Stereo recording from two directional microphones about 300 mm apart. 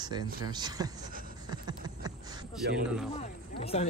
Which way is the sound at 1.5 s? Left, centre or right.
Centre.